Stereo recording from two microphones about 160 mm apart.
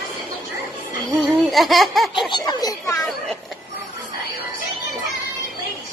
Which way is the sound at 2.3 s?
25° left (ahead or behind).